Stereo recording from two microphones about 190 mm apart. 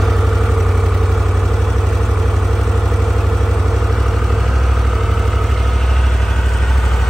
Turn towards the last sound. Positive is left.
turn(degrees=0)  # may be behind; listen again after turning